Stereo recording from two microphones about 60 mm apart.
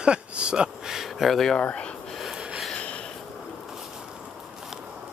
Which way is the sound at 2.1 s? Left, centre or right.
Centre.